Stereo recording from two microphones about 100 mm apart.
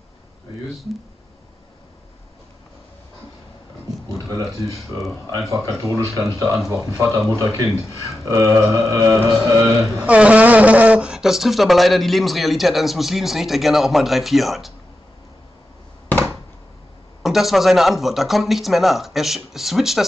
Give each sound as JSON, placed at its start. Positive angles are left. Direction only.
{"t": 4.1, "sound": "a sound", "side_deg": -35}
{"t": 5.5, "sound": "speech", "side_deg": -30}
{"t": 7.2, "sound": "speech", "side_deg": -30}
{"t": 10.0, "sound": "speech", "side_deg": -15}
{"t": 17.2, "sound": "speech", "side_deg": 0}